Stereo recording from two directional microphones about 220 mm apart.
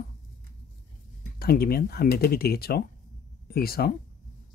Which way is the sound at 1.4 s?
45° left (ahead or behind).